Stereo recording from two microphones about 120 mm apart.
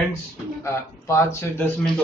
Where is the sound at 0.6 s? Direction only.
25° left (ahead or behind).